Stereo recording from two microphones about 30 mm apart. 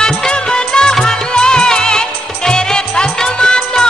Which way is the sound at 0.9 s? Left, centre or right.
Left.